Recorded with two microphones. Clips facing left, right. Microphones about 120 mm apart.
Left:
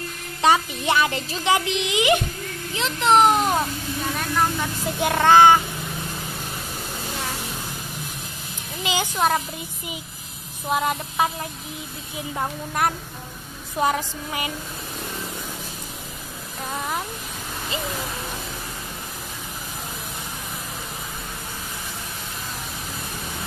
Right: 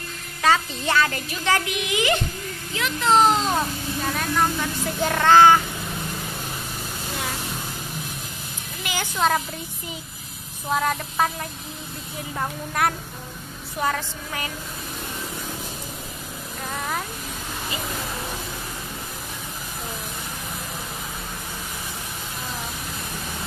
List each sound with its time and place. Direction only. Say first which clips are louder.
0.4 s a child's voice: left 2 dB; 20° left (ahead or behind)
8.8 s a child's voice: left 1 dB; 15° left (ahead or behind)
10.7 s a child's voice: even; 10° left (ahead or behind)
12.4 s a woman's voice: even; 5° left (ahead or behind)
13.7 s a child's voice: left 3 dB; 20° left (ahead or behind)